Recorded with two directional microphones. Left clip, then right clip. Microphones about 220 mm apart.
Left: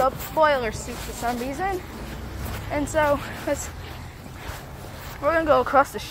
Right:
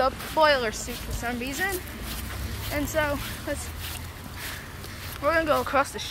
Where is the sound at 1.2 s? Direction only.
20° left (ahead or behind).